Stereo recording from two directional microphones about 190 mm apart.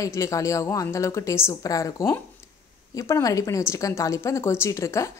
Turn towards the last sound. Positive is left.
turn(degrees=15)  # may be behind; listen again after turning